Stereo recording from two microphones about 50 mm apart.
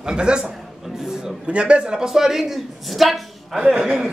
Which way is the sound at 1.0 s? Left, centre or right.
Centre.